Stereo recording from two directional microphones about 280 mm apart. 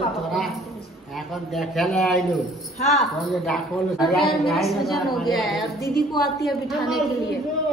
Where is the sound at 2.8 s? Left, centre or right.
Left.